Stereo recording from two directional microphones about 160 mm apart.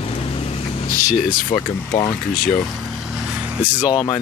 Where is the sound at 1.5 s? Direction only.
45° left (ahead or behind).